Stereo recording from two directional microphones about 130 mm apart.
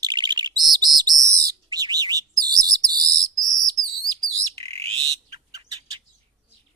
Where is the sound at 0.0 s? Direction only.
35° right (ahead or behind).